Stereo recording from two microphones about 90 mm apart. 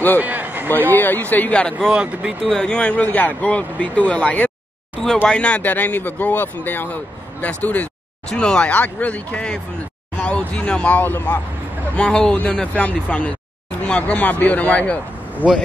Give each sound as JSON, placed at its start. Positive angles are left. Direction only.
{"t": 0.2, "sound": "a sound", "side_deg": -20}
{"t": 0.7, "sound": "speech", "side_deg": 20}
{"t": 1.9, "sound": "speech", "side_deg": -10}
{"t": 2.5, "sound": "speech", "side_deg": 10}
{"t": 12.0, "sound": "speech", "side_deg": 10}